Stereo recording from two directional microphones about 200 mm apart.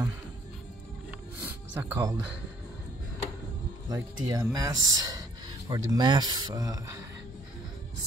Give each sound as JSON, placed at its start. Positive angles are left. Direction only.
{"t": 1.4, "sound": "music", "side_deg": -10}
{"t": 3.9, "sound": "speech", "side_deg": -20}